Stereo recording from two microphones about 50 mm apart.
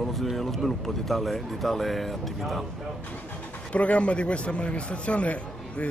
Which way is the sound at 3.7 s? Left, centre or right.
Left.